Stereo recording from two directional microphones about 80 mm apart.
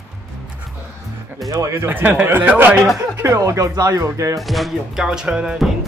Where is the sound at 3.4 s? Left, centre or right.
Right.